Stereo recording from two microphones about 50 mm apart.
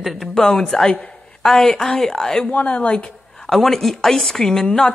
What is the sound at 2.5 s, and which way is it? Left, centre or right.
Speech, left.